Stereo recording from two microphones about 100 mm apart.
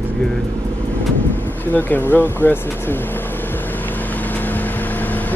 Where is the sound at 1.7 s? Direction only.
20° left (ahead or behind).